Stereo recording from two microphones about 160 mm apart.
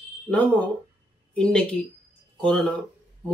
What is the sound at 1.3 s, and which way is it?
Speech, 5° left (ahead or behind).